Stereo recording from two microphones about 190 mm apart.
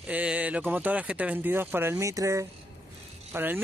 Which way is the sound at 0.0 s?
5° right (ahead or behind).